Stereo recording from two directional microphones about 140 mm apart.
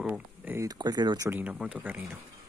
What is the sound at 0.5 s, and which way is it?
Speech, 25° right (ahead or behind).